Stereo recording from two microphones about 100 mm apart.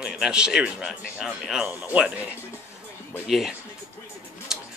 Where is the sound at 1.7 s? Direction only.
15° right (ahead or behind).